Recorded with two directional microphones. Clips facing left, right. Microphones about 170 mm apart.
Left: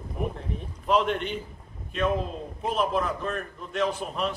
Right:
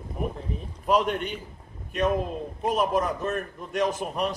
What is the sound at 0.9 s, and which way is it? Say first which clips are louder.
Speech: even; 45° right (ahead or behind).